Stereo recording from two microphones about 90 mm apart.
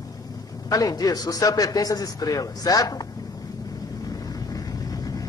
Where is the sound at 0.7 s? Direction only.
40° left (ahead or behind).